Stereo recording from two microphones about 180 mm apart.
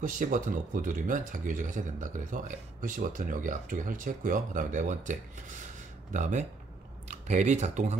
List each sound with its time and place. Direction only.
0.0 s speech: 45° right (ahead or behind)
6.1 s speech: 40° right (ahead or behind)